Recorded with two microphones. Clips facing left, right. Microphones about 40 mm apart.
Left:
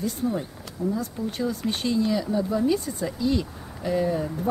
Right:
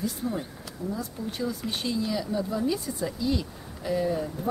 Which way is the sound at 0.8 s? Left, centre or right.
Left.